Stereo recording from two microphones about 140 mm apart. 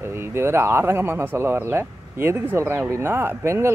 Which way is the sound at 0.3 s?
15° right (ahead or behind).